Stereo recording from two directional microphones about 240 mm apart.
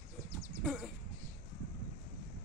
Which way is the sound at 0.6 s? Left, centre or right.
Centre.